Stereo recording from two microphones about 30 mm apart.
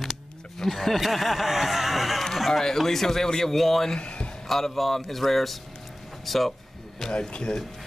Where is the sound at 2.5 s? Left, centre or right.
Centre.